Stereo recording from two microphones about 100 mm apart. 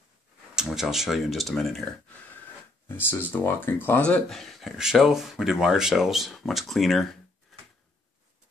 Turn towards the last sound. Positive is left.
turn(degrees=0)  # may be behind; listen again after turning